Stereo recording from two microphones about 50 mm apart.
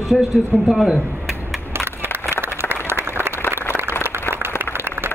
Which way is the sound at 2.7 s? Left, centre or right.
Right.